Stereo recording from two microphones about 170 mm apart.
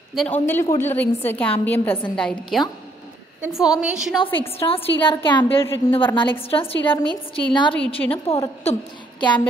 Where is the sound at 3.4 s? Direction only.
5° right (ahead or behind).